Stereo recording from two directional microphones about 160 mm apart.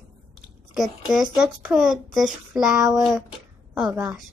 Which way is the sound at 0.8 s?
5° right (ahead or behind).